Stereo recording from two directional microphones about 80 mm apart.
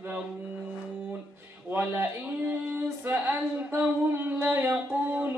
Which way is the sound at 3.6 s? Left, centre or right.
Right.